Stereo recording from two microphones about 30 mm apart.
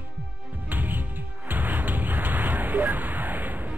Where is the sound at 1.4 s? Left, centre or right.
Right.